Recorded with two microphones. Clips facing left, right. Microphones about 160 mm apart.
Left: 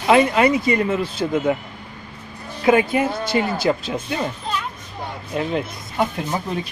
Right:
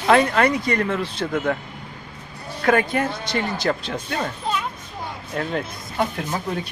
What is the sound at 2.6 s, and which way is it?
Speech, 10° left (ahead or behind).